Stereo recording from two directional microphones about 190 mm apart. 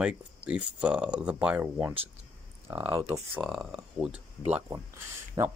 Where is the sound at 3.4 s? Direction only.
Centre (ahead or behind).